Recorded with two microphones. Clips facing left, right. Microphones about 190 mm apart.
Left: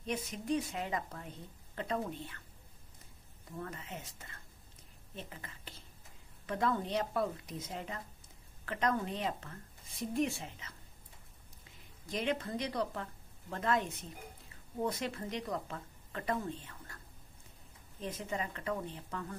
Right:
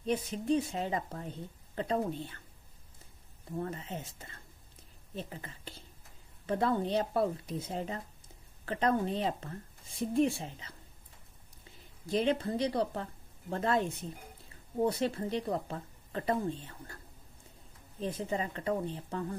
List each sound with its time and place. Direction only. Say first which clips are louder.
0.0 s speech: right 6 dB; 30° right (ahead or behind)
3.5 s speech: right 6 dB; 30° right (ahead or behind)
12.1 s speech: right 6 dB; 30° right (ahead or behind)
18.0 s speech: right 5 dB; 30° right (ahead or behind)